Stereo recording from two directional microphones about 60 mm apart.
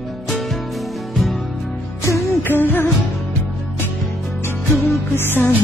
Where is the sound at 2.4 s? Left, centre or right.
Left.